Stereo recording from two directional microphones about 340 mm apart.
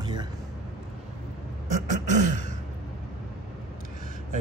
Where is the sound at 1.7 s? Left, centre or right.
Right.